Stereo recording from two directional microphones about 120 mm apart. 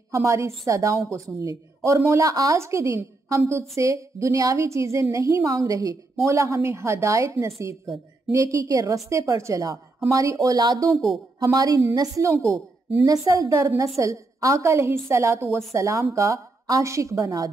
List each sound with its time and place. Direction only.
0.1 s a woman's voice: 25° right (ahead or behind)
10.9 s speech: centre (ahead or behind)
11.3 s a woman's voice: 35° right (ahead or behind)